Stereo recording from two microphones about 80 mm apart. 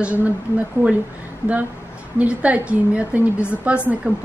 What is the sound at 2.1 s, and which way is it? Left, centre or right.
Speech, centre.